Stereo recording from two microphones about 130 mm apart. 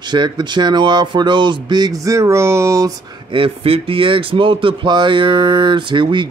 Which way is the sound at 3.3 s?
45° right (ahead or behind).